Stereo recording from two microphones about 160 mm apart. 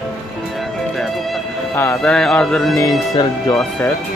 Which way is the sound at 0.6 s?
Centre (ahead or behind).